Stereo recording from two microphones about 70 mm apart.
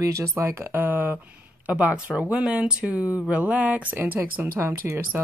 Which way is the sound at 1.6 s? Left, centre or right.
Centre.